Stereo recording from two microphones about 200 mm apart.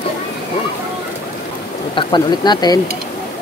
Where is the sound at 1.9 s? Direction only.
20° left (ahead or behind).